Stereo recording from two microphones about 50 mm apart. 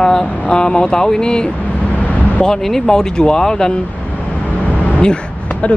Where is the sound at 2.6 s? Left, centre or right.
Centre.